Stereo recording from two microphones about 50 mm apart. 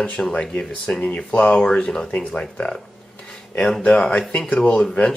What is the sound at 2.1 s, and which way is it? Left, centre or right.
Speech, left.